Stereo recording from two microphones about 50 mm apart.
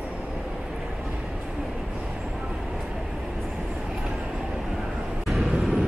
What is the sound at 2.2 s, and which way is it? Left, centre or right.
Vehicle, centre.